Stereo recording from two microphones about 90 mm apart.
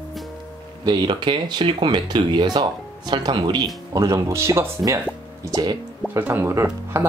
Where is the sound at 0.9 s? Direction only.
55° right (ahead or behind).